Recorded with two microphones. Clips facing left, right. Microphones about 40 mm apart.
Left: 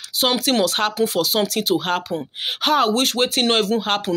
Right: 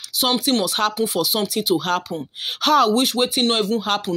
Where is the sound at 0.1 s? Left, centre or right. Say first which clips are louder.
Left 2 dB; left.